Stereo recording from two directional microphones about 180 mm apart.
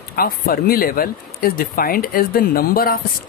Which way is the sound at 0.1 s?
55° left (ahead or behind).